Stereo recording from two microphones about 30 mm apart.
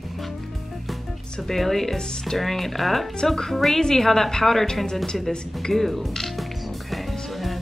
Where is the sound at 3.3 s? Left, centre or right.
Centre.